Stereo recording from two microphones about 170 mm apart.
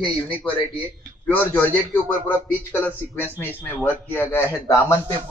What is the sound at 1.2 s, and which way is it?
Speech, 10° left (ahead or behind).